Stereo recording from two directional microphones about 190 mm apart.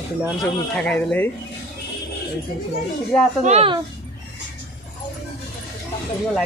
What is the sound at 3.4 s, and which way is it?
Speech, 35° right (ahead or behind).